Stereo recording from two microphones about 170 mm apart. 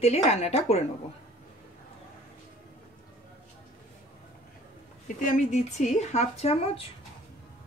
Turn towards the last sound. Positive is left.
turn(degrees=40)  # may be behind; listen again after turning